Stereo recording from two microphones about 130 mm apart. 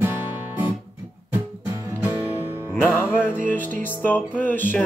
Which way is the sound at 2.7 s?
15° left (ahead or behind).